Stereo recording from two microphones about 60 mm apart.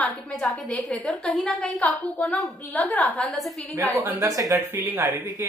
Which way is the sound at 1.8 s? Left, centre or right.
Left.